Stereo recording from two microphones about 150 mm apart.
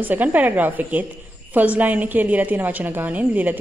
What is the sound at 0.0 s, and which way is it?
A woman's voice, 10° right (ahead or behind).